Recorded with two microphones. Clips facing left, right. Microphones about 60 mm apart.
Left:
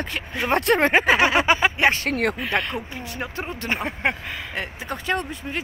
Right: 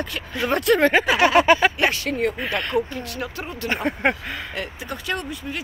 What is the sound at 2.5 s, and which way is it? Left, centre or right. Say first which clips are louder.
Speech: right 2 dB; centre.